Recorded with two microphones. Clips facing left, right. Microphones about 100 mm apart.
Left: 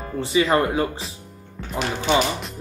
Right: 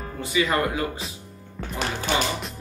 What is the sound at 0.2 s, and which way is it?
Speech, 30° left (ahead or behind).